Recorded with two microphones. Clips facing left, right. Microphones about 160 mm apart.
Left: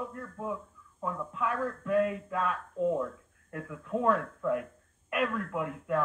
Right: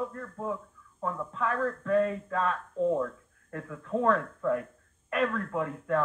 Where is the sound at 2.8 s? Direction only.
30° right (ahead or behind).